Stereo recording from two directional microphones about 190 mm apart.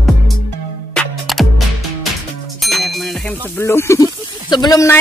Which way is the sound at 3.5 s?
15° left (ahead or behind).